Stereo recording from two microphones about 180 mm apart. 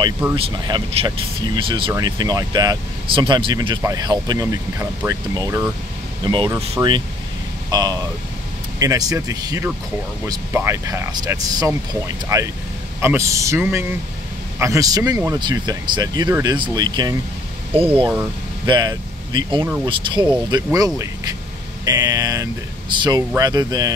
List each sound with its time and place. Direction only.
0.4 s speech: 25° right (ahead or behind)